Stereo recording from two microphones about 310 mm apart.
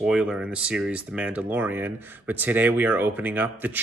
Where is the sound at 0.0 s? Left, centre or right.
Centre.